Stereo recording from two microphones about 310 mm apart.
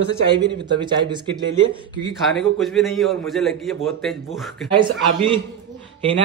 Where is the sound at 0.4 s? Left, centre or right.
Centre.